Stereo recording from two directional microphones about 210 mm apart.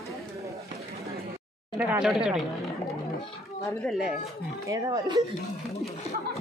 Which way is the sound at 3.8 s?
Centre (ahead or behind).